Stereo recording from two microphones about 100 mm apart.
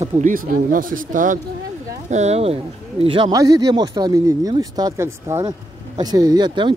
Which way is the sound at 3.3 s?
40° right (ahead or behind).